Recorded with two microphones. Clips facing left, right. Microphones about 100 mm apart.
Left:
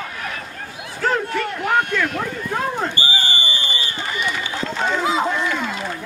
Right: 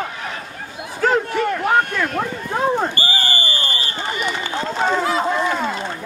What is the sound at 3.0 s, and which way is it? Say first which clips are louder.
Fire alarm: right 1 dB; 45° right (ahead or behind).